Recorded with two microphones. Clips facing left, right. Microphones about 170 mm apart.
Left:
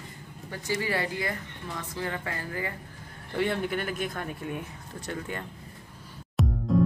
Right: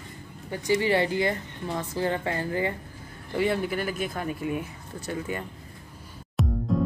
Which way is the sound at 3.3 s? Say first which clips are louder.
Right 2 dB; 5° right (ahead or behind).